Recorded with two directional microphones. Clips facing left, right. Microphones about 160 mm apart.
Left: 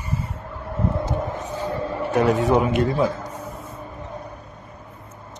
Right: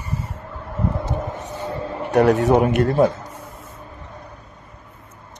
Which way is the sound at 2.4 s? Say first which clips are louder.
Right 3 dB; 60° right (ahead or behind).